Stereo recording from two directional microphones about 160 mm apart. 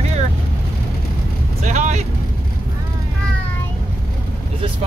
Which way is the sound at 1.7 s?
45° right (ahead or behind).